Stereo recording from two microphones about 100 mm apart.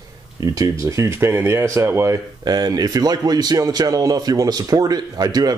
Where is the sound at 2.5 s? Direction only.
40° right (ahead or behind).